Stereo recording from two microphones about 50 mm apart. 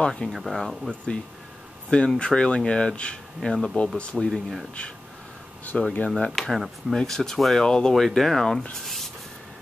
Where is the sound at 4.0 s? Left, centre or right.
Left.